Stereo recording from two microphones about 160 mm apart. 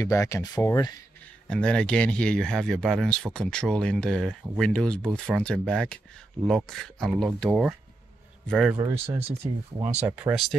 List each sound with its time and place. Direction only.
0.0 s speech: 20° left (ahead or behind)
1.5 s speech: 5° left (ahead or behind)
8.9 s speech: 15° right (ahead or behind)